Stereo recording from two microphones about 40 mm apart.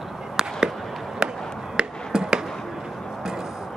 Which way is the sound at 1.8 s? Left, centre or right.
Right.